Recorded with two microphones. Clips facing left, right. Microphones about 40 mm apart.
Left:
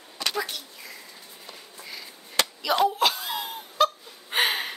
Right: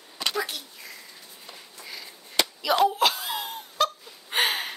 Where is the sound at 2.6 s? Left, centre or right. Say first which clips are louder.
Right 1 dB; centre.